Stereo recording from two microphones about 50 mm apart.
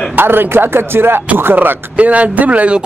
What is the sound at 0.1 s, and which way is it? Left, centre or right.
Speech, right.